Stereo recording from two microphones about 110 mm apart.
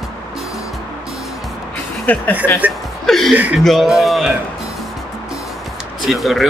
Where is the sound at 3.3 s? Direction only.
15° right (ahead or behind).